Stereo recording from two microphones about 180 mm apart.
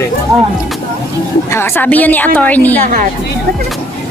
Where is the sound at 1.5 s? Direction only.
10° left (ahead or behind).